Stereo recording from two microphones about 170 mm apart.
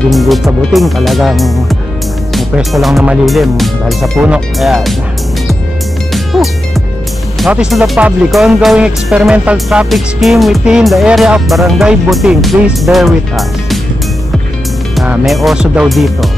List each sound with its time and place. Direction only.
0.1 s speech: centre (ahead or behind)
6.1 s music: centre (ahead or behind)
7.3 s speech: centre (ahead or behind)
15.0 s speech: centre (ahead or behind)